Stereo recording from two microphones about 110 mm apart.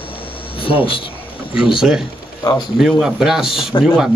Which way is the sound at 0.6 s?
55° left (ahead or behind).